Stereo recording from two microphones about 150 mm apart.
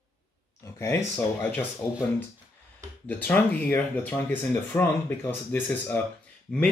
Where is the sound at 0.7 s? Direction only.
15° left (ahead or behind).